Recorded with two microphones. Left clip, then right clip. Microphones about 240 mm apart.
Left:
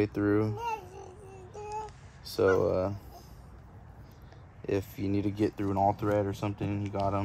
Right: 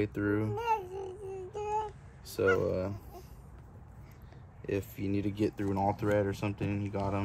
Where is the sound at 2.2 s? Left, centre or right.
Left.